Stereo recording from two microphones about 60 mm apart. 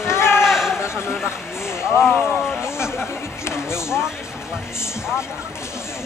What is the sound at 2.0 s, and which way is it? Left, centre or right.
Speech, left.